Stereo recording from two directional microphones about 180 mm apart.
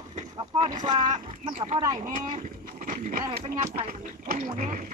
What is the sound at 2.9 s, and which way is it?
Speech, 45° right (ahead or behind).